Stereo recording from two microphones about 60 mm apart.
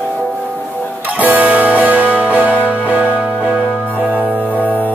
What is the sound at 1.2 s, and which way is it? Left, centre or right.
Music, right.